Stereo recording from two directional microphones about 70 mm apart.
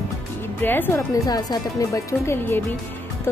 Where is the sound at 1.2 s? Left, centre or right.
Left.